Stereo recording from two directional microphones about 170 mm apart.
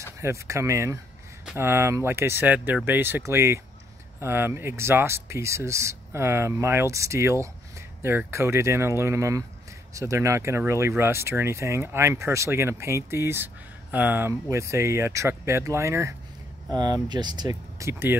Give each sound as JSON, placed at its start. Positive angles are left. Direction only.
{"t": 0.2, "sound": "speech", "side_deg": -15}